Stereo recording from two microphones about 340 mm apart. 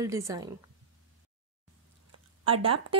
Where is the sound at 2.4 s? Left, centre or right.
Centre.